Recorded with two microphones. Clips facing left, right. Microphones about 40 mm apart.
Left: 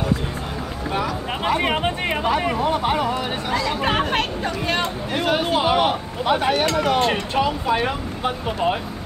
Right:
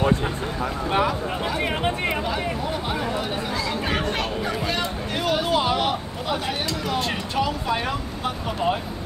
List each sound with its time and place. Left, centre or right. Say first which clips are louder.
1.4 s speech: left 6 dB; left
2.2 s speech: left 6 dB; left
6.6 s speech: left 7 dB; left
7.1 s speech: left 4 dB; left